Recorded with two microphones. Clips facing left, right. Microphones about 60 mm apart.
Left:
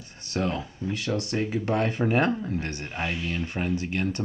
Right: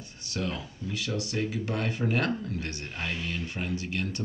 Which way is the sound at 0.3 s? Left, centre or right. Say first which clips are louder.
Left 5 dB; left.